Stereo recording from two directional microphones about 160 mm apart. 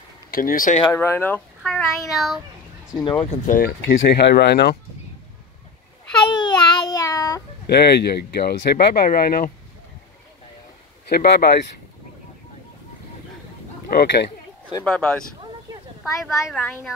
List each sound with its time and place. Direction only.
0.3 s speech: 60° left (ahead or behind)
0.9 s speech: 15° left (ahead or behind)
1.6 s child singing: centre (ahead or behind)
3.0 s speech: 30° left (ahead or behind)
3.3 s speech: 60° left (ahead or behind); by 4.7 s 90° left
6.3 s child singing: 25° left (ahead or behind)
7.6 s speech: 90° left; by 9.5 s 65° left (ahead or behind)
11.1 s speech: 85° left
13.8 s speech: 85° left
14.9 s child singing: 5° left (ahead or behind)
16.5 s speech: 10° left (ahead or behind)